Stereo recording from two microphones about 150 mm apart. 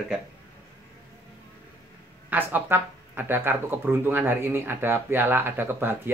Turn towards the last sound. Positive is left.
turn(degrees=-15)  # may be behind; listen again after turning